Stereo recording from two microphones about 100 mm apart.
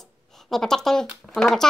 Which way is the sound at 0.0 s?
5° left (ahead or behind).